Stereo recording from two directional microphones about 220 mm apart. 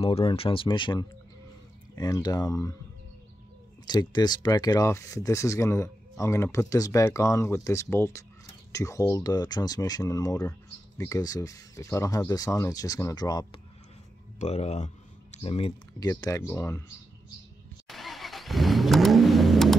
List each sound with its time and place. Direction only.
0.0 s speech: 25° left (ahead or behind)
3.8 s speech: 20° left (ahead or behind)
14.4 s speech: 30° left (ahead or behind)
16.1 s speech: 15° left (ahead or behind)
17.8 s vehicle: centre (ahead or behind)